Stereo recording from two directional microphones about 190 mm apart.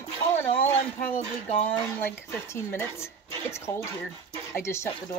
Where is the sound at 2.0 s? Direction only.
10° left (ahead or behind).